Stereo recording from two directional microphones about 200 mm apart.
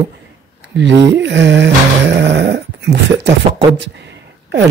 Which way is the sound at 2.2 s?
60° right (ahead or behind).